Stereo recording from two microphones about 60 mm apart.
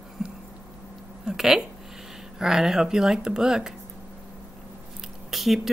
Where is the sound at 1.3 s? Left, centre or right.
Centre.